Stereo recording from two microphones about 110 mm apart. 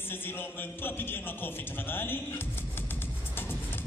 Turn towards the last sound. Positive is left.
turn(degrees=20)  # may be behind; listen again after turning